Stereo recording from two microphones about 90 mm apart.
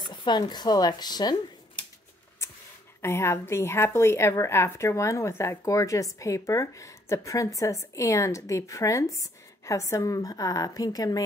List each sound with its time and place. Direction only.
0.0 s speech: 55° left (ahead or behind)
3.0 s a woman's voice: 30° left (ahead or behind)